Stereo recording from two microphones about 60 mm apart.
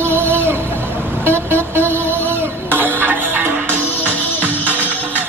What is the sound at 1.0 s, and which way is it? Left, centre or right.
Music, right.